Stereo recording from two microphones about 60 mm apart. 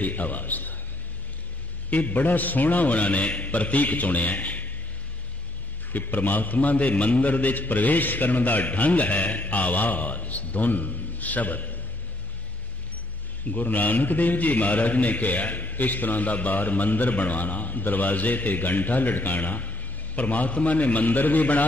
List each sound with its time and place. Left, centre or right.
0.0 s a man's voice: left
1.9 s a man's voice: left
5.9 s a man's voice: left
13.5 s a man's voice: left